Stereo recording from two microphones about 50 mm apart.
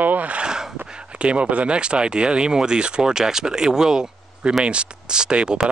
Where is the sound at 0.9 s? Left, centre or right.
Right.